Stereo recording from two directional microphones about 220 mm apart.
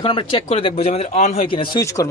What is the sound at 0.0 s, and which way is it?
A man's voice, 25° left (ahead or behind).